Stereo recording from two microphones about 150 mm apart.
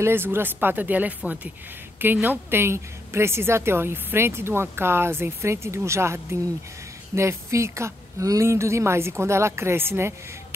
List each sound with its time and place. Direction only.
0.0 s a woman's voice: 15° right (ahead or behind)